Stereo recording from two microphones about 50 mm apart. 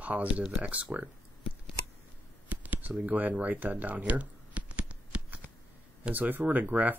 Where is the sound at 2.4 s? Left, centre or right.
Right.